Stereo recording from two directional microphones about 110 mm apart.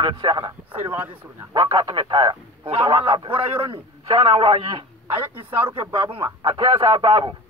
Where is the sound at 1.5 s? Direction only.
45° right (ahead or behind).